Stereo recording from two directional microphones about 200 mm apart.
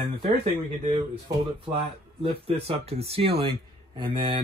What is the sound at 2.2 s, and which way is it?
Speech, 30° right (ahead or behind).